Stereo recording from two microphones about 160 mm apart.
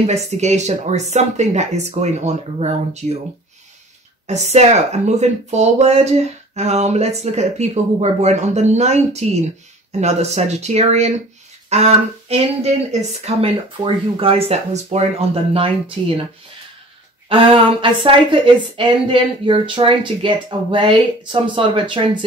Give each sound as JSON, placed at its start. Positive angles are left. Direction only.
{"t": 0.0, "sound": "speech", "side_deg": -45}
{"t": 4.3, "sound": "a woman's voice", "side_deg": -45}
{"t": 17.3, "sound": "a woman's voice", "side_deg": -30}